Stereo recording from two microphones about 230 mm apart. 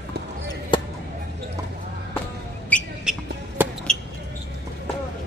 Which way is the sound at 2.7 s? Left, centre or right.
Centre.